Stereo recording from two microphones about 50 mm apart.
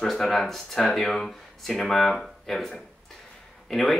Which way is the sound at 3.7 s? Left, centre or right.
Centre.